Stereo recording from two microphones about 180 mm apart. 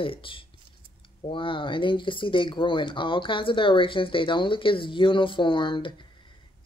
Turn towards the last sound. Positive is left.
turn(degrees=25)  # may be behind; listen again after turning